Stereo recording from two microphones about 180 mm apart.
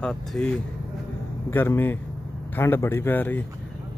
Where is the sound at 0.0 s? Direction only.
5° left (ahead or behind).